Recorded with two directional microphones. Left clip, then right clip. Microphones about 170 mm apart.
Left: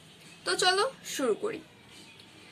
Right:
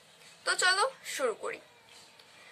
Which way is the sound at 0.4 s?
10° right (ahead or behind).